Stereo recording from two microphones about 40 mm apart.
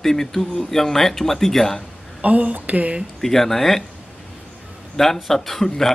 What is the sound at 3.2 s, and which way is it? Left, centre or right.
Speech, centre.